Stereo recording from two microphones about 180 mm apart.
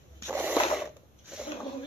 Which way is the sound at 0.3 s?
5° right (ahead or behind).